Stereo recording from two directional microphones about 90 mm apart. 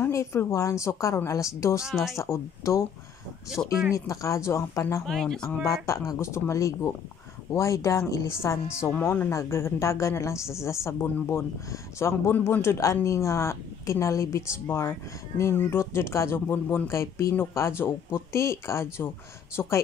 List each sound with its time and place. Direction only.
0.0 s a woman's voice: 35° left (ahead or behind)
1.8 s speech: 5° right (ahead or behind)
2.1 s a woman's voice: 30° left (ahead or behind)
5.0 s speech: 5° left (ahead or behind)
5.7 s a woman's voice: 35° left (ahead or behind)
12.4 s a man's voice: 20° left (ahead or behind)
12.6 s a woman's voice: 30° left (ahead or behind)